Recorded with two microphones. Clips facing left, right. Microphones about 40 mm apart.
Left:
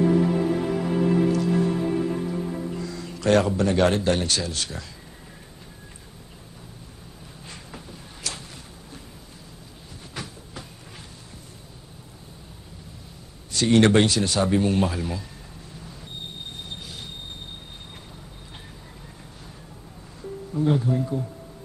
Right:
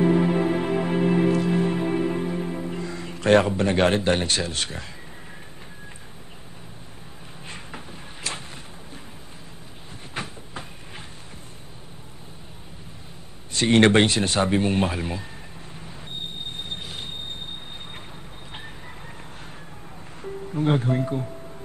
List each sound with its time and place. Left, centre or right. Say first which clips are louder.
0.0 s music: right 1 dB; right
7.4 s a sound: right 3 dB; right
10.1 s train: right 4 dB; right
13.5 s speech: right 1 dB; right
16.7 s train wheels squealing: right 3 dB; right
20.2 s music: even; right